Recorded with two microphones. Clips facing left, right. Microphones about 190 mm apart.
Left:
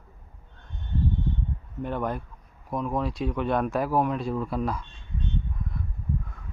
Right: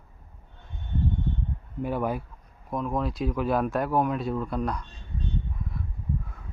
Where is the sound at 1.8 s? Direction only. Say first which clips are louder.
Right 1 dB; 5° right (ahead or behind).